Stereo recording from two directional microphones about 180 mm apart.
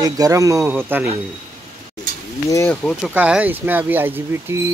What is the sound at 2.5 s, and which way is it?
Speech, 10° left (ahead or behind).